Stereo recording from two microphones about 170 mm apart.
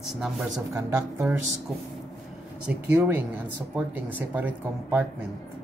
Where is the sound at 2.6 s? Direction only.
10° right (ahead or behind).